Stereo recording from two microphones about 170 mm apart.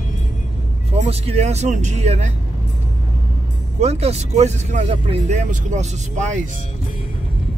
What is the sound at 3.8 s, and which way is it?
Speech, 40° right (ahead or behind).